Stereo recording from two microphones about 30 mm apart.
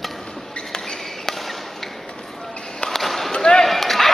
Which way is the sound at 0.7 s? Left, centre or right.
Left.